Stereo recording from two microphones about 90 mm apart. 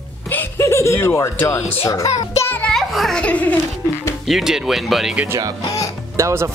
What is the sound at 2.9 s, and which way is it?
Speech, centre (ahead or behind).